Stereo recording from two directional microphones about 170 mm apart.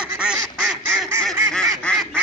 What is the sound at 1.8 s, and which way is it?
Goose, 5° left (ahead or behind).